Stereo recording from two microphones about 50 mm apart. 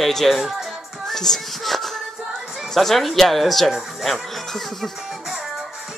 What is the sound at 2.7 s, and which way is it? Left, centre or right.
Speech, centre.